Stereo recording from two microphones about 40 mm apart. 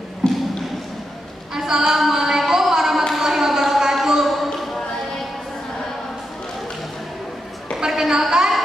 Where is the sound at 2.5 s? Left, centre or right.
Centre.